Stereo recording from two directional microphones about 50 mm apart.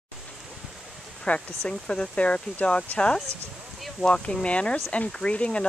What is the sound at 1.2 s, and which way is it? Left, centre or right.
Speech, left.